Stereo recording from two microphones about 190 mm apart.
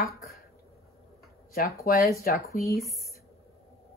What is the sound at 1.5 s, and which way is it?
Speech, 50° left (ahead or behind).